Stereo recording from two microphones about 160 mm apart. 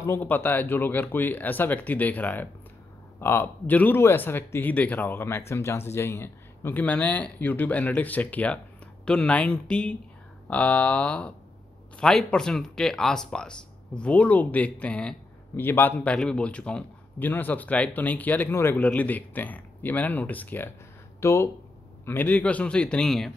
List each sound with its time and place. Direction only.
0.0 s speech: 15° left (ahead or behind)